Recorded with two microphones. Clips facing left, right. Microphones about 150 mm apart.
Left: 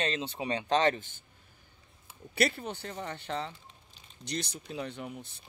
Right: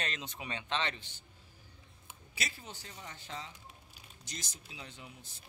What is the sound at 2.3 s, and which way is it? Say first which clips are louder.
Speech: left 14 dB; 60° left (ahead or behind).